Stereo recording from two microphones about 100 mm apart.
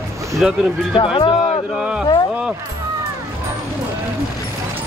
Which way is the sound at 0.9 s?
60° left (ahead or behind).